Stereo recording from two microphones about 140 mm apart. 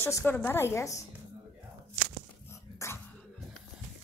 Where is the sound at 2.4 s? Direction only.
20° left (ahead or behind).